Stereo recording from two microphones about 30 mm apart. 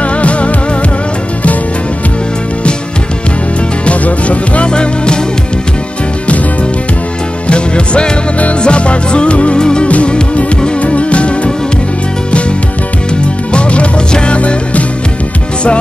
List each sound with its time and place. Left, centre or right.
0.0 s music: left
3.8 s music: left
4.6 s music: left
7.4 s music: left
9.6 s music: left
9.8 s music: left